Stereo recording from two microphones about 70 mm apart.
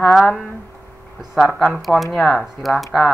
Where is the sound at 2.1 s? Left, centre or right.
Centre.